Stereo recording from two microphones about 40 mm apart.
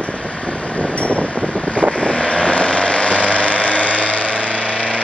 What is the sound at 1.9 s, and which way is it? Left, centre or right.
Vehicle, left.